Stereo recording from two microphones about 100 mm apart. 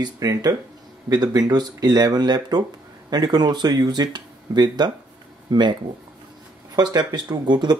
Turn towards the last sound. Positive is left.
turn(degrees=-45)  # may be behind; listen again after turning